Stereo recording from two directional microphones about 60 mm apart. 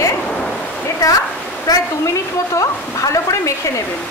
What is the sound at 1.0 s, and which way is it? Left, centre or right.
Speech, left.